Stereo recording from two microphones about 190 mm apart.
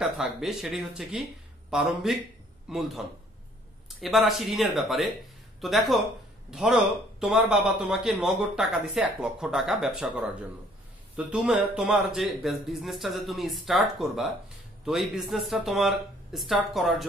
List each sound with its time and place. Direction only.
0.0 s a man's voice: centre (ahead or behind)
4.0 s a man's voice: centre (ahead or behind)